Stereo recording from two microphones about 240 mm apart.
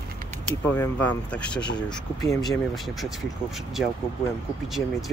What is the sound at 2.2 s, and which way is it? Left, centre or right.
Speech, centre.